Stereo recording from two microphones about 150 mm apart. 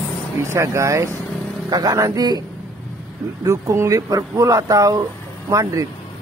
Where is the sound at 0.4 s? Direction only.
20° right (ahead or behind).